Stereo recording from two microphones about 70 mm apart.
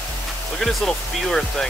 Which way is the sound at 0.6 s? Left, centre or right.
Centre.